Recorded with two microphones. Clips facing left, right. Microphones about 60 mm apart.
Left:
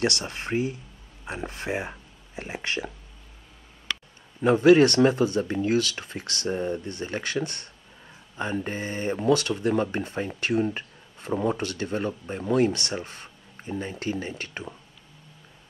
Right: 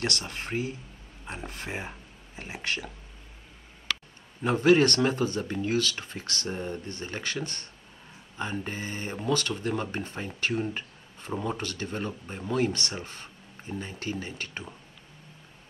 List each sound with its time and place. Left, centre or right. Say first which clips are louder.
0.0 s speech: left 5 dB; left
1.7 s speech: left 7 dB; centre
2.5 s speech: left 2 dB; left
4.4 s speech: left 5 dB; centre
8.4 s speech: left 4 dB; centre